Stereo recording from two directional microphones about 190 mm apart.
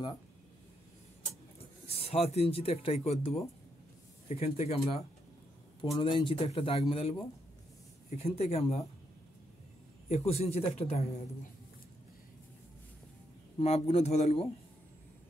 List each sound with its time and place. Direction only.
1.9 s speech: 30° left (ahead or behind)
10.0 s speech: 35° left (ahead or behind)
13.6 s speech: 35° left (ahead or behind)